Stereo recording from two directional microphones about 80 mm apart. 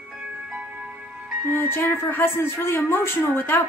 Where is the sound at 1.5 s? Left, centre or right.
Left.